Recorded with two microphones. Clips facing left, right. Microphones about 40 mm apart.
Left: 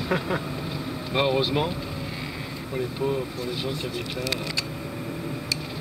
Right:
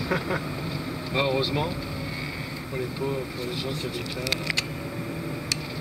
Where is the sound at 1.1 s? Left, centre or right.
Left.